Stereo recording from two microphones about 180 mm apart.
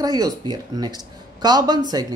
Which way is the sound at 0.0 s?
20° right (ahead or behind).